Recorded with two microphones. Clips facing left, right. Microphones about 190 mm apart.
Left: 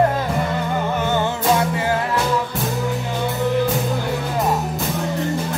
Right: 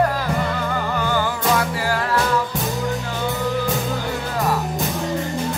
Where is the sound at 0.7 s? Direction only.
25° left (ahead or behind).